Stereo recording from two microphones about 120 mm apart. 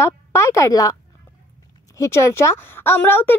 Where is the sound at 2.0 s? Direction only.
25° left (ahead or behind).